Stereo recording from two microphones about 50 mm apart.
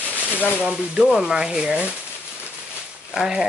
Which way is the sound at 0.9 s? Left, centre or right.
Centre.